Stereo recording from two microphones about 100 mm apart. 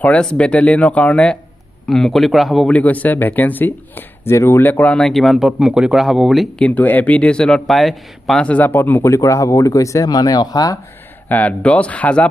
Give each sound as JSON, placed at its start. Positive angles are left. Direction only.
{"t": 0.0, "sound": "speech", "side_deg": 10}
{"t": 2.7, "sound": "speech", "side_deg": 15}
{"t": 4.9, "sound": "speech", "side_deg": 0}
{"t": 6.6, "sound": "speech", "side_deg": 15}
{"t": 8.5, "sound": "speech", "side_deg": 20}
{"t": 9.0, "sound": "speech", "side_deg": 30}
{"t": 11.2, "sound": "speech", "side_deg": 15}